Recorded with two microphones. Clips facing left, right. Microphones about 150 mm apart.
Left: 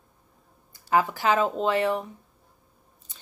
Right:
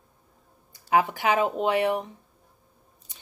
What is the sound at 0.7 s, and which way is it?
Speech, 20° right (ahead or behind).